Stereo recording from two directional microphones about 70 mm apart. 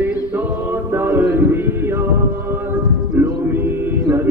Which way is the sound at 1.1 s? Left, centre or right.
Right.